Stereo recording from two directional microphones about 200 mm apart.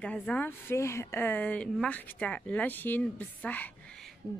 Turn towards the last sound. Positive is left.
turn(degrees=5)  # may be behind; listen again after turning